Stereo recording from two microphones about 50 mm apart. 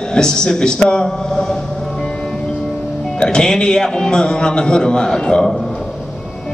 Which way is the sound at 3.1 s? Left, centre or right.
Centre.